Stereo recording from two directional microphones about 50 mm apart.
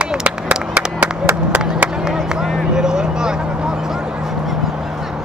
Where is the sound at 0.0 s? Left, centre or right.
Right.